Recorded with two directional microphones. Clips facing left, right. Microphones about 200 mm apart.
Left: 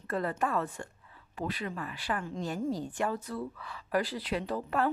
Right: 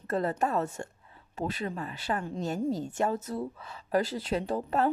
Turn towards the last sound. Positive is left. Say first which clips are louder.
# right 3 dB
turn(degrees=-25)  # may be behind; listen again after turning